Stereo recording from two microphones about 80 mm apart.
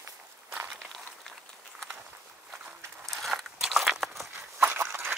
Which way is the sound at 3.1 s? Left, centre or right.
Centre.